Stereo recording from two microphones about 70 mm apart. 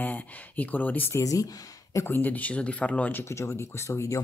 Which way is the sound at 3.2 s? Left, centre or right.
Left.